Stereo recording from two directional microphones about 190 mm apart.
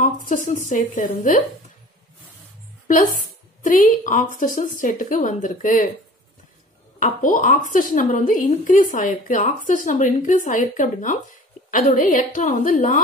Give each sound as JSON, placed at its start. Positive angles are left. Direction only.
{"t": 0.0, "sound": "a woman's voice", "side_deg": 45}
{"t": 3.6, "sound": "a woman's voice", "side_deg": 45}
{"t": 7.0, "sound": "a woman's voice", "side_deg": 45}